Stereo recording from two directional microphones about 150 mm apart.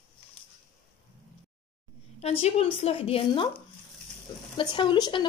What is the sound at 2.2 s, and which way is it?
A woman's voice, 45° left (ahead or behind).